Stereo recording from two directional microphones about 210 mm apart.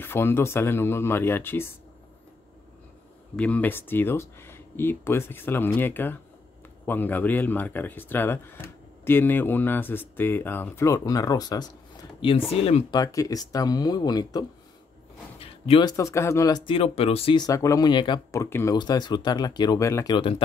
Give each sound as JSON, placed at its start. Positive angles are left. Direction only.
{"t": 0.0, "sound": "speech", "side_deg": 10}
{"t": 3.3, "sound": "speech", "side_deg": 5}